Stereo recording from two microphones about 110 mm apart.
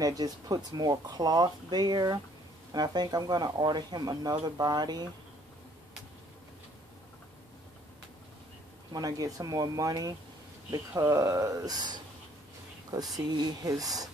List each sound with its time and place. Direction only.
0.0 s speech: 40° right (ahead or behind)
8.9 s speech: 35° right (ahead or behind)